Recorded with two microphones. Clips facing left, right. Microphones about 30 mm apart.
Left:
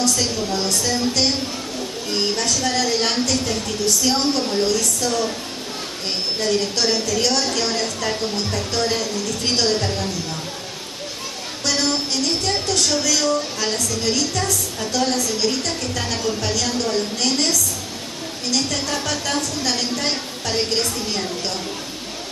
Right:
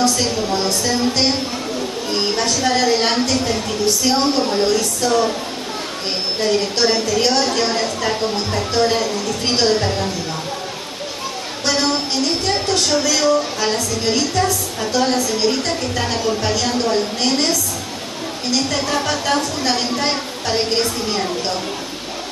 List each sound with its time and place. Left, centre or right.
0.5 s a woman's voice: right
6.4 s a woman's voice: centre
11.6 s music: centre
12.3 s a woman's voice: centre
12.6 s a woman's voice: right